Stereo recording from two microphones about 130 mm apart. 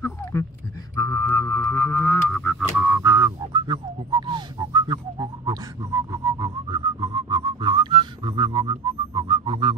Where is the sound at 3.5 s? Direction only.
35° right (ahead or behind).